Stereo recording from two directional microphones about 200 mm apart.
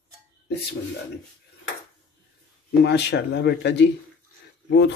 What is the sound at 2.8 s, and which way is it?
Speech, 60° left (ahead or behind).